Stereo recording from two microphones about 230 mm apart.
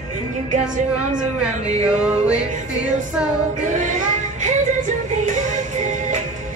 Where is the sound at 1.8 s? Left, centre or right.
Centre.